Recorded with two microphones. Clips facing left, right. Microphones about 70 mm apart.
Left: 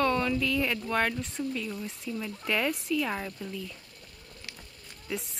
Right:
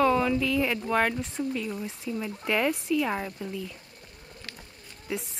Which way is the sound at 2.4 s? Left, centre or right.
Centre.